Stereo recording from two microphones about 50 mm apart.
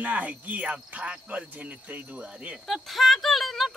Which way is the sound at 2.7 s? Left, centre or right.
Centre.